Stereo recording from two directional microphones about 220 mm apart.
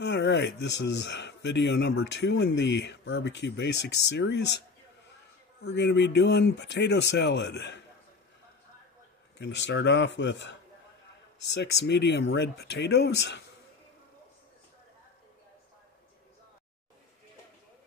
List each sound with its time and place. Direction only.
0.0 s speech: 50° left (ahead or behind)
5.6 s speech: 50° left (ahead or behind)
9.4 s speech: 55° left (ahead or behind)